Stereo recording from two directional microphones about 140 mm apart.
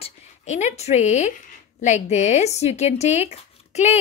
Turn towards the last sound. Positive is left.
turn(degrees=55)  # may be behind; listen again after turning